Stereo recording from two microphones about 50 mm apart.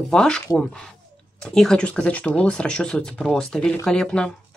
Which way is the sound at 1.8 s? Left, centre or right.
Left.